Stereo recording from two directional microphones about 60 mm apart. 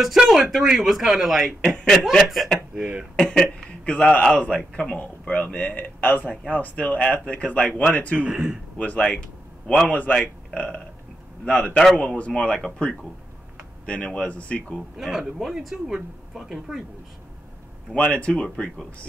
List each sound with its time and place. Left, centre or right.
0.3 s speech: centre
1.6 s speech: centre
2.2 s speech: centre
2.7 s speech: centre
3.2 s speech: centre
3.8 s a man's voice: left
8.2 s speech: centre
8.7 s a man's voice: left
15.0 s speech: centre
17.9 s a man's voice: left